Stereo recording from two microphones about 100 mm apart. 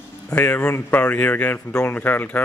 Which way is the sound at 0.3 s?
10° left (ahead or behind).